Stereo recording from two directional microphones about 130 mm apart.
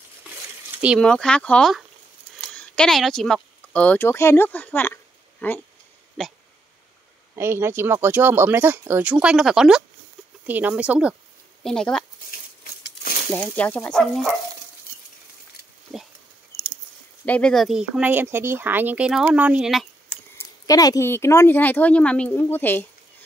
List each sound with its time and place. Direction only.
0.7 s speech: 10° right (ahead or behind)
1.0 s speech: 5° left (ahead or behind)
2.4 s a sound: 10° left (ahead or behind)
3.7 s speech: 10° left (ahead or behind)
6.2 s speech: 5° left (ahead or behind)
7.3 s speech: 20° right (ahead or behind)
11.6 s speech: 5° left (ahead or behind)
13.3 s speech: 10° left (ahead or behind)
15.9 s speech: 5° left (ahead or behind)
17.3 s speech: 5° left (ahead or behind)
20.3 s speech: 25° left (ahead or behind)